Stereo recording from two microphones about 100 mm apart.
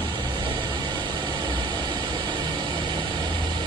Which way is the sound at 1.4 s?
45° right (ahead or behind).